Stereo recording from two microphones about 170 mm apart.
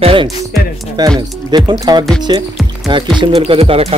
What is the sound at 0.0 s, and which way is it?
Music, 30° right (ahead or behind).